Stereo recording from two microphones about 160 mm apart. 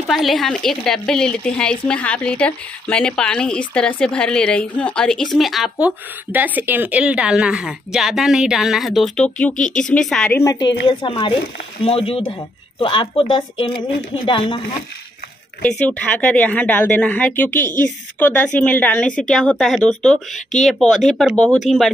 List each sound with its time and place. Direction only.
0.1 s speech: centre (ahead or behind)
10.4 s speech: 25° left (ahead or behind)
15.8 s speech: 10° left (ahead or behind)